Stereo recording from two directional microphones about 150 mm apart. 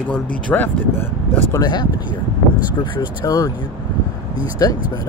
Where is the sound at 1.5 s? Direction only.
30° left (ahead or behind).